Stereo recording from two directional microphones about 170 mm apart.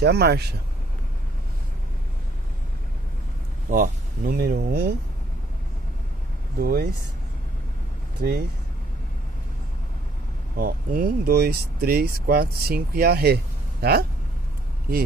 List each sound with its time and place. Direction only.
0.0 s speech: 75° right (ahead or behind)
3.7 s speech: 50° right (ahead or behind); by 4.9 s 70° right (ahead or behind)
6.6 s speech: 60° right (ahead or behind)
8.2 s speech: 55° right (ahead or behind)
10.6 s speech: 55° right (ahead or behind)